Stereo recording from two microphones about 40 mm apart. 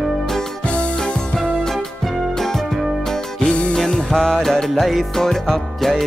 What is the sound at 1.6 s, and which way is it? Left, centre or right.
Music, centre.